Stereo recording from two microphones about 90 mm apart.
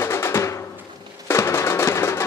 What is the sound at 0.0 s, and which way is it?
Music, 30° left (ahead or behind).